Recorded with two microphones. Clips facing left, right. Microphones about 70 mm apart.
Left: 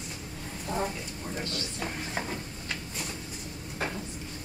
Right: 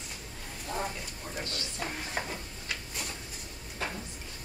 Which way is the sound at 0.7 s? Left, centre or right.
Left.